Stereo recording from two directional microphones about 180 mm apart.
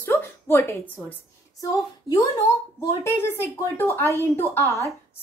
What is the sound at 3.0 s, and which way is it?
A woman's voice, 15° left (ahead or behind).